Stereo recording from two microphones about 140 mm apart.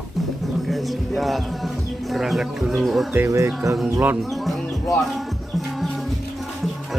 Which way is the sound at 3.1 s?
20° right (ahead or behind).